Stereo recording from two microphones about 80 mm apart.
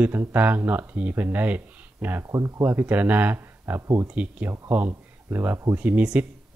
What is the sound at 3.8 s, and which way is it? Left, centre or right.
Speech, right.